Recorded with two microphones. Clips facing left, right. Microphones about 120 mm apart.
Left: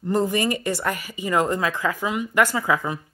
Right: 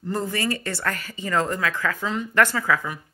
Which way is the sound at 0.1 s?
15° left (ahead or behind).